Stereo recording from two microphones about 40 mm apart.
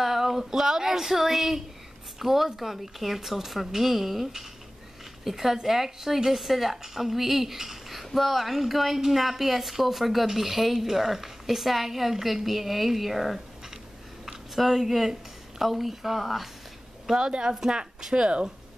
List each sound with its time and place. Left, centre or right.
0.0 s speech: centre
17.1 s speech: centre